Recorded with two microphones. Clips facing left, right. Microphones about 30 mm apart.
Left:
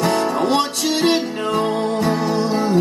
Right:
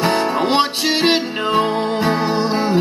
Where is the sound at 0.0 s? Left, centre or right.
Right.